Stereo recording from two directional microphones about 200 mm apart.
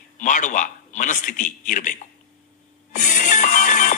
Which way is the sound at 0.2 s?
40° left (ahead or behind).